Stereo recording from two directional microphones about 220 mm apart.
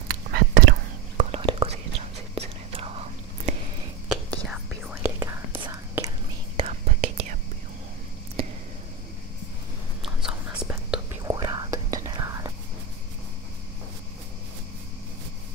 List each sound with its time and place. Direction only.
0.1 s whispering: 45° right (ahead or behind)
1.1 s whispering: 25° right (ahead or behind)
4.1 s whispering: centre (ahead or behind)
6.6 s whispering: 30° right (ahead or behind)
8.4 s a sound: 25° right (ahead or behind)
10.0 s whispering: 5° right (ahead or behind)
11.2 s whispering: 15° right (ahead or behind)